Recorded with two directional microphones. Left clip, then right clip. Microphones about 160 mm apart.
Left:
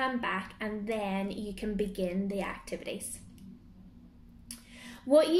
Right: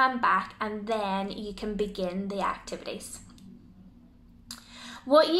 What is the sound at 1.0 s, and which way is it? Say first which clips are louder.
A woman's voice: right 4 dB; 10° left (ahead or behind).